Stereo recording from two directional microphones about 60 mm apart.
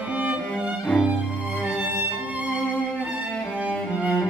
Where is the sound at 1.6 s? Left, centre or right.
Centre.